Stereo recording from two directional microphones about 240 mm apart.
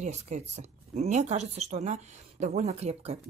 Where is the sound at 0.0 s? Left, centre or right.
Right.